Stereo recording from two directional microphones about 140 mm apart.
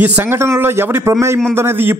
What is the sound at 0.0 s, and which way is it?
A man's voice, 15° right (ahead or behind).